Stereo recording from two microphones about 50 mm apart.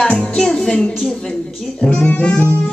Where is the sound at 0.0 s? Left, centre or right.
Centre.